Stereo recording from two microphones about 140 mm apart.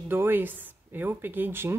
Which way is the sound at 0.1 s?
15° right (ahead or behind).